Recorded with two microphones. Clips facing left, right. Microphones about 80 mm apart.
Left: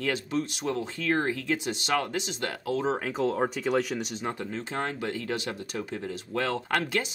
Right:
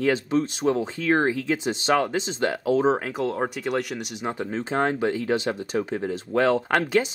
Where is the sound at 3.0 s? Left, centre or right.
Centre.